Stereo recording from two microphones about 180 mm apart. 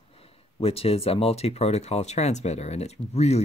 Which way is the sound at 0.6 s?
35° left (ahead or behind).